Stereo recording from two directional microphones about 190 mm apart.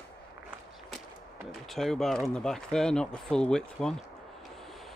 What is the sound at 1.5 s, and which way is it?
Speech, centre (ahead or behind).